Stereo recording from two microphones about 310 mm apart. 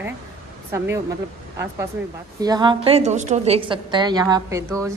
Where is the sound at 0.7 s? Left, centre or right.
Centre.